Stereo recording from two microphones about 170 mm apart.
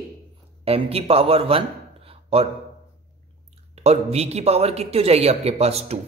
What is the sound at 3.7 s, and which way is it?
A man's voice, 40° right (ahead or behind).